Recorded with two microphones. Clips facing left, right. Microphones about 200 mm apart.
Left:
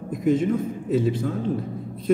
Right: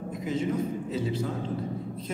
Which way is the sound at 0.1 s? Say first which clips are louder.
Left 9 dB; 50° left (ahead or behind).